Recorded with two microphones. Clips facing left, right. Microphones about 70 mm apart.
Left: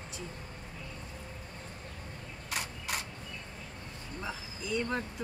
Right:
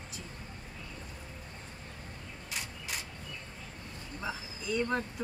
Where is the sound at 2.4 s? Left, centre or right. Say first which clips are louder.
Left 4 dB; left.